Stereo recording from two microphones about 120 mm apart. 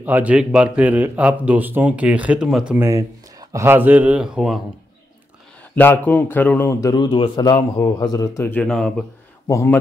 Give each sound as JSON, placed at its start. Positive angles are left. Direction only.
{"t": 0.0, "sound": "speech", "side_deg": -15}
{"t": 2.8, "sound": "speech", "side_deg": -25}
{"t": 5.6, "sound": "a man's voice", "side_deg": 15}
{"t": 8.6, "sound": "speech", "side_deg": 5}
{"t": 9.5, "sound": "a man's voice", "side_deg": 25}